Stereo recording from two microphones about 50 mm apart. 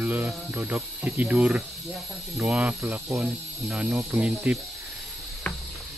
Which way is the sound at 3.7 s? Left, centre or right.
Right.